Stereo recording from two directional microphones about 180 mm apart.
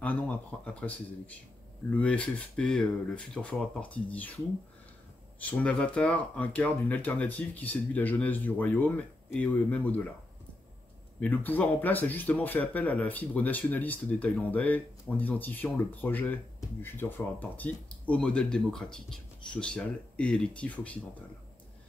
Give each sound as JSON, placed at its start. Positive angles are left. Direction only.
{"t": 0.0, "sound": "speech", "side_deg": 10}
{"t": 5.4, "sound": "speech", "side_deg": 10}
{"t": 11.1, "sound": "speech", "side_deg": 10}